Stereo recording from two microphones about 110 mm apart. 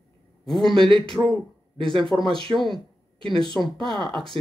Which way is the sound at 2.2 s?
50° right (ahead or behind).